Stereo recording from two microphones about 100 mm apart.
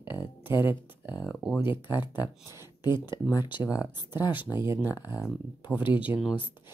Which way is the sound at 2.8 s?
45° left (ahead or behind).